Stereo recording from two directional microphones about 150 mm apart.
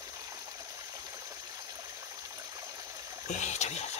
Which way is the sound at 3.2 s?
50° left (ahead or behind).